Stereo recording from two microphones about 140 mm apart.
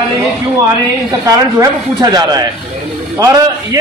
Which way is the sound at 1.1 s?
25° right (ahead or behind).